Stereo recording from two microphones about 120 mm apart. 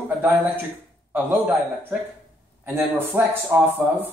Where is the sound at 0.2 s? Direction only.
15° right (ahead or behind).